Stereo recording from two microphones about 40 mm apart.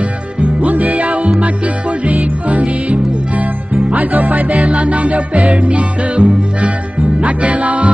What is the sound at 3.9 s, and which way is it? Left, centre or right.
Music, right.